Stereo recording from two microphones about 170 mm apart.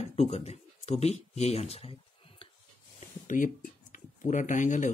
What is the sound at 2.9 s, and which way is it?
Speech, 50° left (ahead or behind).